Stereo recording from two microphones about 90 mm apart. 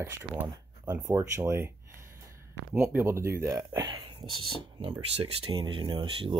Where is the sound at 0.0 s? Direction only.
25° right (ahead or behind).